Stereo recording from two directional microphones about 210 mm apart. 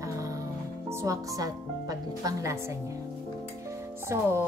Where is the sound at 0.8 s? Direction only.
15° right (ahead or behind).